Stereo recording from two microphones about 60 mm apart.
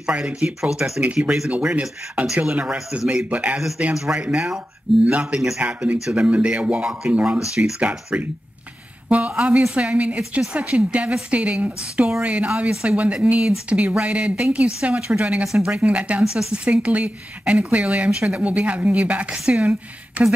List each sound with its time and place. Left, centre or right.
0.0 s speech: centre
0.6 s speech: centre
1.0 s speech: centre
9.4 s speech: centre
15.4 s speech: centre
15.8 s speech: right